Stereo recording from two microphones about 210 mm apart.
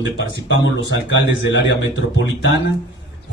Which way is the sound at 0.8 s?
60° left (ahead or behind).